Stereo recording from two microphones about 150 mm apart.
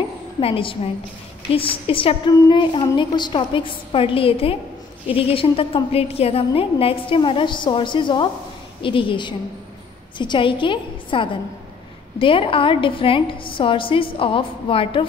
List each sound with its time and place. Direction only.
0.4 s a woman's voice: 40° left (ahead or behind)